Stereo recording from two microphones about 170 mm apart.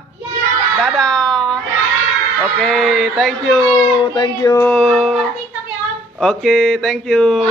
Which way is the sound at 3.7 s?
25° left (ahead or behind).